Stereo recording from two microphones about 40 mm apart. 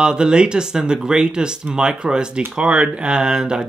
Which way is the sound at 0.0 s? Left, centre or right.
Centre.